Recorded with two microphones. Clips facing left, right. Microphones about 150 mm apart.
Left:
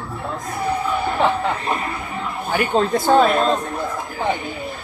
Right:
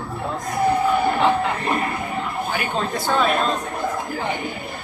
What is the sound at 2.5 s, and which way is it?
Speech, 45° left (ahead or behind).